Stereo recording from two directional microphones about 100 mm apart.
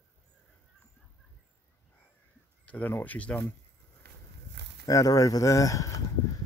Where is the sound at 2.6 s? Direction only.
15° left (ahead or behind).